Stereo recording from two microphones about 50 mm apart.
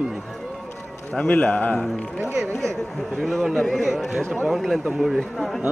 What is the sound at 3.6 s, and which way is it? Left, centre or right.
Speech, centre.